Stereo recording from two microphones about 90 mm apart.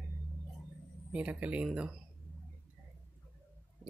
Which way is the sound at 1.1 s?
15° right (ahead or behind).